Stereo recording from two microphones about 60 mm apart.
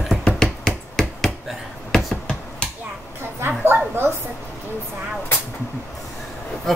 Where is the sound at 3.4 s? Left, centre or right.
Right.